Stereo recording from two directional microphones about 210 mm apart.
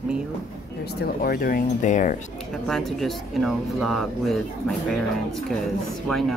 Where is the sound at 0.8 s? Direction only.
45° left (ahead or behind).